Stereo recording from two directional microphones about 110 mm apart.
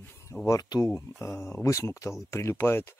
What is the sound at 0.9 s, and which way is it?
Speech, 20° left (ahead or behind).